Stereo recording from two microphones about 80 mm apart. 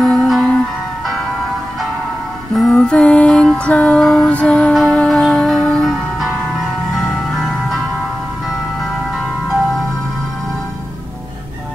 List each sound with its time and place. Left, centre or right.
0.0 s music: centre
2.5 s music: centre
2.8 s music: centre